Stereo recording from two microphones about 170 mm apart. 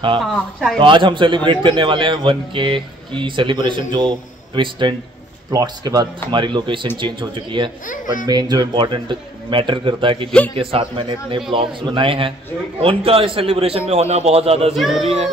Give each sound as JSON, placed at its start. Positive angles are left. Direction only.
{"t": 0.2, "sound": "speech", "side_deg": 0}
{"t": 0.7, "sound": "a man's voice", "side_deg": -30}
{"t": 14.7, "sound": "speech", "side_deg": 0}